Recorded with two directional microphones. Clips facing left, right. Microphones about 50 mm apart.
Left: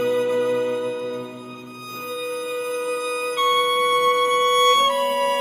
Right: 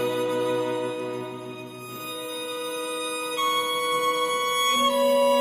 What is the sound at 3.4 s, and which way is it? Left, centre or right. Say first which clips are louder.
Music: left 6 dB; left.